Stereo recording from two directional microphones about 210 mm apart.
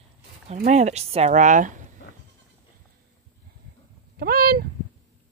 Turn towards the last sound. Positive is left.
turn(degrees=-45)  # may be behind; listen again after turning